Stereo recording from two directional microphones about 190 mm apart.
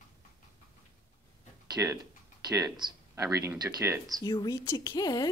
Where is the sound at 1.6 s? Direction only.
20° right (ahead or behind).